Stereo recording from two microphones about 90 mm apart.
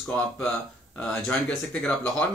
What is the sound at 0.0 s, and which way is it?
Speech, 20° left (ahead or behind).